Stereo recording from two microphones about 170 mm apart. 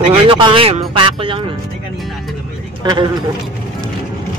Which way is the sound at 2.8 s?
25° right (ahead or behind).